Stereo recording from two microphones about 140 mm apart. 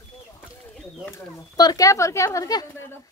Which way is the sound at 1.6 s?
25° left (ahead or behind).